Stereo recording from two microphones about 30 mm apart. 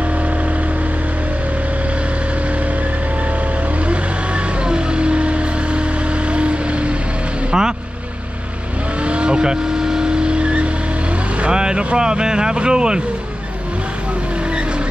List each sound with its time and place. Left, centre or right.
3.8 s vehicle: right
7.5 s vehicle: right
9.0 s vehicle: right